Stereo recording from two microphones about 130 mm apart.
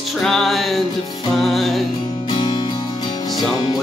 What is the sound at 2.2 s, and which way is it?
Music, 35° left (ahead or behind).